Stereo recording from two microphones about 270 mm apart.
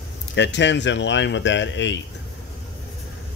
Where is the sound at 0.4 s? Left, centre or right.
Left.